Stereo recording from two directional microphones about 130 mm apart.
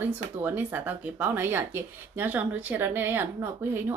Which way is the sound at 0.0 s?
15° right (ahead or behind).